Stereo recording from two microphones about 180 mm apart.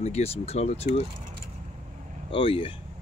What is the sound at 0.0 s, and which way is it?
Speech, 35° left (ahead or behind).